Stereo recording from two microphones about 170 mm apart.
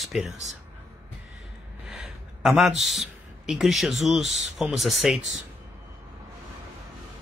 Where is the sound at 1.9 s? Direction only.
Centre (ahead or behind).